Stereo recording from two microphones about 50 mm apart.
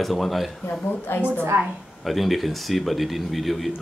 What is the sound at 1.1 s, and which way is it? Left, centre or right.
Speech, left.